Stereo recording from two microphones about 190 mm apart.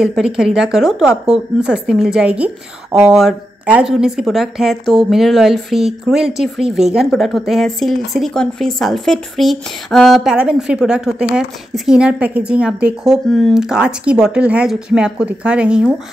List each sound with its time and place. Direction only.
0.0 s speech: 5° right (ahead or behind)